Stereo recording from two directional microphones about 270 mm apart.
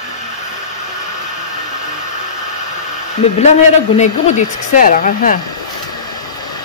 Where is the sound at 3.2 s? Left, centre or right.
Left.